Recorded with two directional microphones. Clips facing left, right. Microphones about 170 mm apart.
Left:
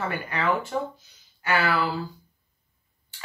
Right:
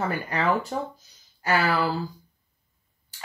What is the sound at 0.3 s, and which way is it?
Speech, 40° right (ahead or behind).